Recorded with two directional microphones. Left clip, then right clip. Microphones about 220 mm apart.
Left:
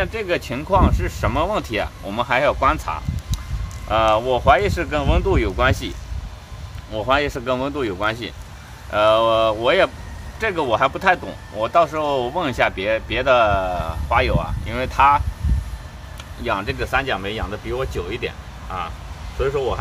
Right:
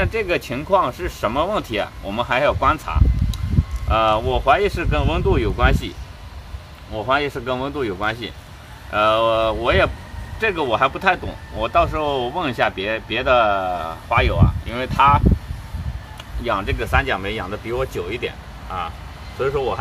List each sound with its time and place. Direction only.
0.0 s speech: 5° right (ahead or behind); by 15.2 s 15° left (ahead or behind)
16.4 s speech: centre (ahead or behind)